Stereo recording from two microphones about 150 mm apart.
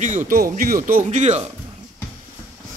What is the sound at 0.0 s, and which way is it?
Speech, 55° right (ahead or behind).